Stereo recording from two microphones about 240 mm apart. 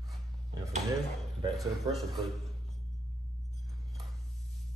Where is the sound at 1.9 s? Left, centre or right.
Centre.